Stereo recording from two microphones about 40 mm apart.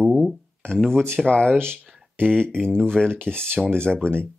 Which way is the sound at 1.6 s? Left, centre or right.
Right.